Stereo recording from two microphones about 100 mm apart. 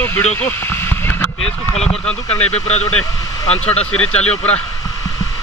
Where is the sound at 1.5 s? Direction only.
90° left.